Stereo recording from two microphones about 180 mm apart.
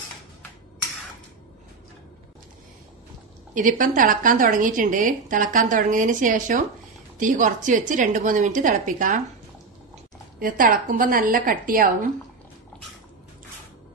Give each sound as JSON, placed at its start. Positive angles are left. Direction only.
{"t": 3.5, "sound": "a woman's voice", "side_deg": -45}
{"t": 10.4, "sound": "a woman's voice", "side_deg": -50}